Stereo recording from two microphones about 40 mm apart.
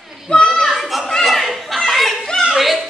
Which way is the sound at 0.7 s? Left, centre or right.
Centre.